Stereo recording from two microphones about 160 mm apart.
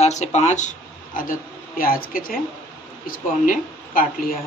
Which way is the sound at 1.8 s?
65° left (ahead or behind).